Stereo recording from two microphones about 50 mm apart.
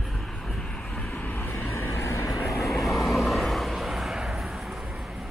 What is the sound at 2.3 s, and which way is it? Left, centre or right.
Vehicle, centre.